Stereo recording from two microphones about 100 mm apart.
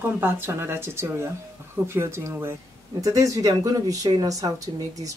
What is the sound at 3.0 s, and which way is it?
Speech, 35° right (ahead or behind).